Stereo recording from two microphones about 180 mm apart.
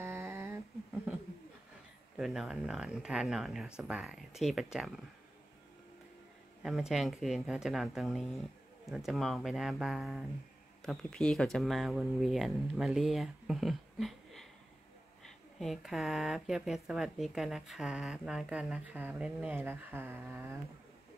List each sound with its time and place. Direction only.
0.0 s humming: 15° right (ahead or behind)
2.1 s speech: centre (ahead or behind)
6.6 s speech: centre (ahead or behind)